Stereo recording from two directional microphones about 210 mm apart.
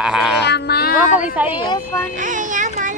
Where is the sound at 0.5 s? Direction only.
50° left (ahead or behind).